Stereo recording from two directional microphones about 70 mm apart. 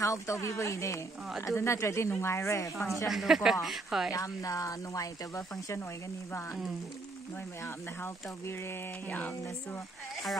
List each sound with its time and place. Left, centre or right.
0.0 s speech: left
3.1 s speech: centre
4.1 s speech: left
7.6 s speech: left
9.1 s music: left